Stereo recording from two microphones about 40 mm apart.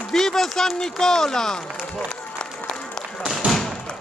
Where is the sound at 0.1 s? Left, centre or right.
Centre.